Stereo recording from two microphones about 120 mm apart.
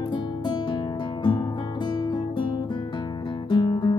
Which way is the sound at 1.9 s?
40° left (ahead or behind).